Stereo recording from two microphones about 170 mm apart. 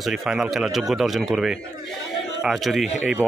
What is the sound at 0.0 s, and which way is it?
Speech, centre (ahead or behind).